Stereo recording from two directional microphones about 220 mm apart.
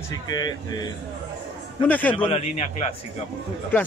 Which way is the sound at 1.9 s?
10° left (ahead or behind).